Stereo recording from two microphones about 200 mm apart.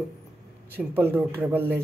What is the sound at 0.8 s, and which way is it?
A woman's voice, 10° right (ahead or behind).